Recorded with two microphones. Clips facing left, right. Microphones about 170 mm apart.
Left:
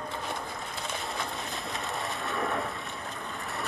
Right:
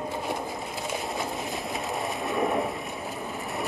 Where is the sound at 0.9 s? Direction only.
5° right (ahead or behind).